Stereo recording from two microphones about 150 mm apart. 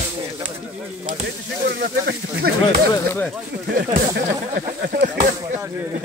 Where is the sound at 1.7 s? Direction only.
90° right.